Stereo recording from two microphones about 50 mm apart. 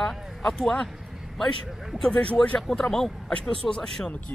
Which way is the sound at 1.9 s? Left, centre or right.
Centre.